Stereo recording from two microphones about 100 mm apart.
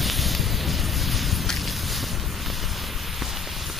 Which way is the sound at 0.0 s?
Centre (ahead or behind).